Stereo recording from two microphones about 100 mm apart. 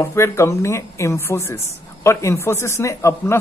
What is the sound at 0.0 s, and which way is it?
Speech, 25° left (ahead or behind).